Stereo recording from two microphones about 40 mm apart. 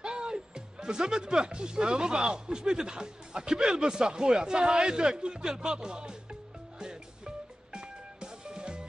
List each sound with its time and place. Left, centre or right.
0.0 s speech: right
6.8 s music: centre